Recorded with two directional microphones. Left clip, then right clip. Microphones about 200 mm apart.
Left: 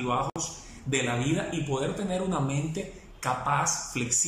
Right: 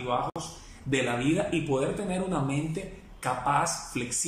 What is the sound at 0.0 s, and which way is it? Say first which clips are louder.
Speech: left 1 dB; centre (ahead or behind).